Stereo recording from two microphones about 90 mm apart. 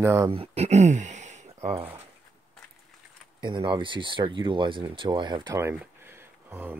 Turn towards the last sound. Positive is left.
turn(degrees=-25)  # may be behind; listen again after turning